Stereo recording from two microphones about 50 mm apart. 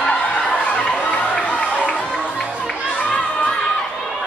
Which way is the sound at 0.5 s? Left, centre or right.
Centre.